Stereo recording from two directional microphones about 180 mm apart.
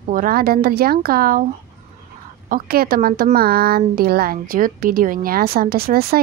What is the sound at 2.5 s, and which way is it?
Speech, 55° right (ahead or behind).